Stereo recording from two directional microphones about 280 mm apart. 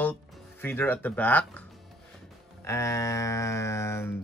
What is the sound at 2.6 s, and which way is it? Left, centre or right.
Speech, centre.